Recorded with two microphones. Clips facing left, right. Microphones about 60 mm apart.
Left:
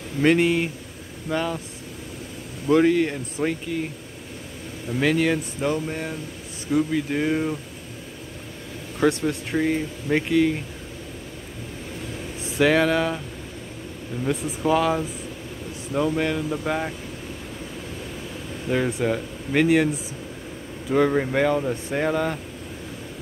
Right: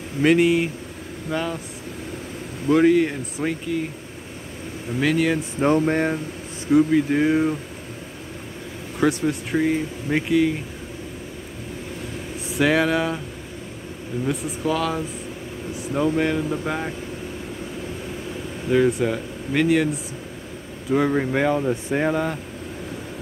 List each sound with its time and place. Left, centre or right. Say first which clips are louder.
0.2 s speech: right 2 dB; centre
2.7 s speech: right 2 dB; centre
4.9 s speech: right 1 dB; centre
5.6 s speech: right 7 dB; right
6.7 s speech: right 5 dB; centre
9.0 s speech: right 1 dB; centre
12.4 s speech: even; centre
14.2 s speech: left 1 dB; centre
14.6 s speech: left 4 dB; centre
15.9 s speech: right 2 dB; centre
18.7 s speech: right 4 dB; centre
20.9 s speech: even; centre